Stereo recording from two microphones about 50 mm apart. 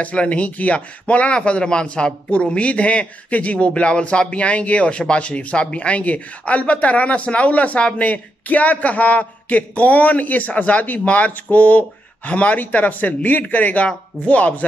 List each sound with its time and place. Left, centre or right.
0.0 s a man's voice: left